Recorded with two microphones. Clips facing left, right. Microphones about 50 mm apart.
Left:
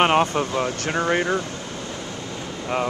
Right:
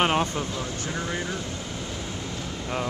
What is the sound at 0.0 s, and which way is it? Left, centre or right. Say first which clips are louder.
Speech: left 5 dB; left.